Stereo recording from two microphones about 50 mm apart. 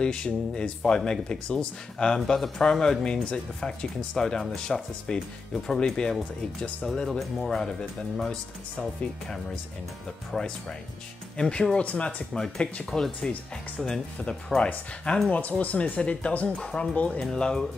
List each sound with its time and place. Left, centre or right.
0.0 s speech: centre
10.3 s speech: centre
11.3 s speech: centre
11.7 s speech: left
12.9 s speech: centre
15.2 s speech: left
16.9 s speech: left
17.2 s speech: centre